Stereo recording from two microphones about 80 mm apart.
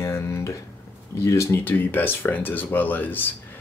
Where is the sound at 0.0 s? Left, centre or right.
Left.